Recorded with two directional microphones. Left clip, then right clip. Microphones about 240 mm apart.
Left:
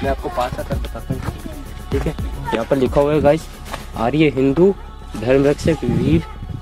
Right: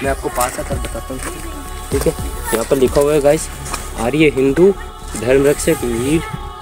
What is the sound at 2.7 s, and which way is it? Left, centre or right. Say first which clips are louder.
Speech: right 3 dB; left.